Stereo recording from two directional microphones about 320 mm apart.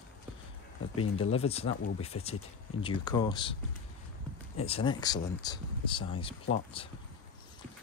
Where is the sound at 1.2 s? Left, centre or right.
Centre.